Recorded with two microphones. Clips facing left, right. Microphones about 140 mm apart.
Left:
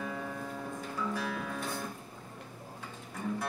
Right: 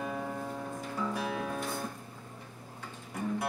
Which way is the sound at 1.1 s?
20° right (ahead or behind).